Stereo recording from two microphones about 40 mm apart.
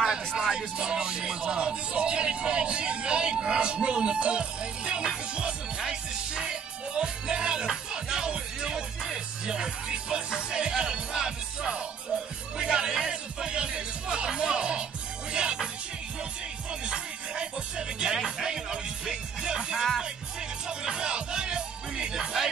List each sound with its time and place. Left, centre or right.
0.4 s speech: centre
5.3 s music: right
16.8 s music: right